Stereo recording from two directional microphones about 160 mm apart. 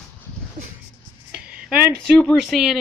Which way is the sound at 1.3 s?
5° right (ahead or behind).